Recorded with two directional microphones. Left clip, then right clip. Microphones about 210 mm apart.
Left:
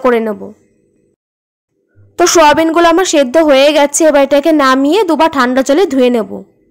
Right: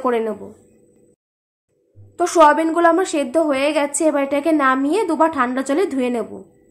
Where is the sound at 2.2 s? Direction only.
40° left (ahead or behind).